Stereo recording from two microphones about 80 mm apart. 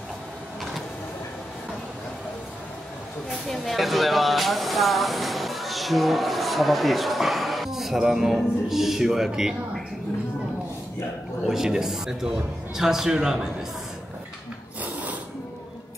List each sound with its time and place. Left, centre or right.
3.3 s speech: centre
11.4 s speech: centre
14.8 s a sound: centre